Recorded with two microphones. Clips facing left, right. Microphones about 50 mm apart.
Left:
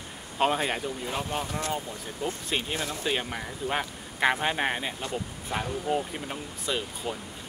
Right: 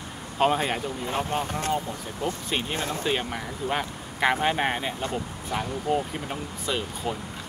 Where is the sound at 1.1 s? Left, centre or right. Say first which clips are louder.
Right 6 dB; right.